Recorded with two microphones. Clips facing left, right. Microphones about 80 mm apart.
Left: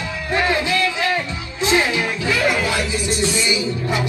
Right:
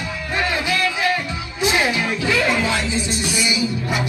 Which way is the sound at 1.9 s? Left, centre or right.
Left.